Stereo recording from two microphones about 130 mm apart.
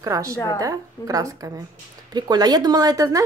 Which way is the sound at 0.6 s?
25° right (ahead or behind).